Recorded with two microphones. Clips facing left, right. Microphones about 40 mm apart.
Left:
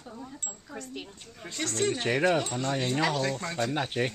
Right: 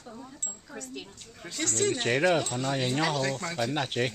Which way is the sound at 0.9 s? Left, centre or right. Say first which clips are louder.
Left 1 dB; centre.